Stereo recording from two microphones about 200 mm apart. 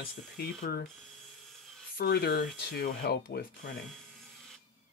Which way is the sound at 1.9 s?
55° left (ahead or behind).